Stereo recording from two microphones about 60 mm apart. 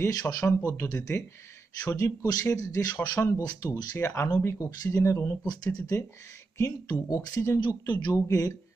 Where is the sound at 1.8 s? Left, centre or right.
Left.